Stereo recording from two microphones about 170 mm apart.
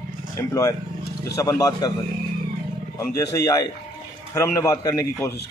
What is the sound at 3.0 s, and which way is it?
Speech, 20° left (ahead or behind).